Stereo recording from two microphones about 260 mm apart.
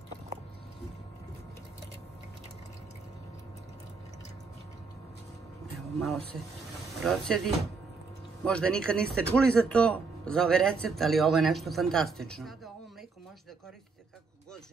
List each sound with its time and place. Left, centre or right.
5.9 s a man's voice: centre